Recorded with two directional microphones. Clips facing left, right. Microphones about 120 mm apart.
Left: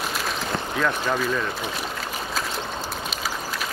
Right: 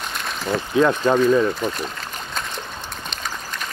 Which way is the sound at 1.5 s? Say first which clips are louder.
Right 4 dB; 5° left (ahead or behind).